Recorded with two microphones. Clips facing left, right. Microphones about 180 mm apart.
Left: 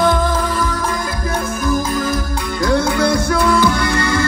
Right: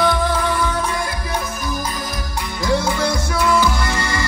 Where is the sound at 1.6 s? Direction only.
50° left (ahead or behind).